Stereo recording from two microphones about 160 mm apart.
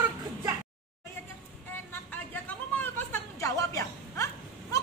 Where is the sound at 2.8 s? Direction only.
15° left (ahead or behind).